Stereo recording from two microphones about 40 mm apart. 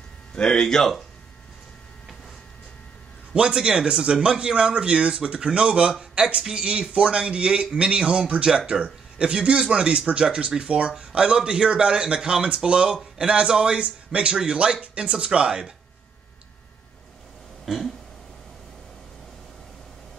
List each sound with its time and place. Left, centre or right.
0.3 s speech: centre
3.3 s speech: right
17.6 s a sound: centre